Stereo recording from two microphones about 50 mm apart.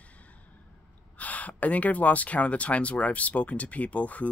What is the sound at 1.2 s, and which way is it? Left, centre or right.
A man's voice, left.